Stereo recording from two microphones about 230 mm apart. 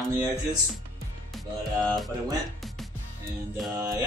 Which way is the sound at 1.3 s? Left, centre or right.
Centre.